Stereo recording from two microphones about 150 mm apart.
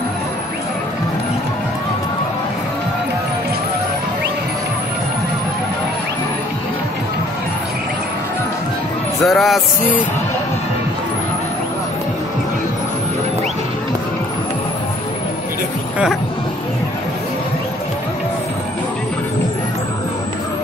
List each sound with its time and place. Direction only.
9.2 s speech: centre (ahead or behind)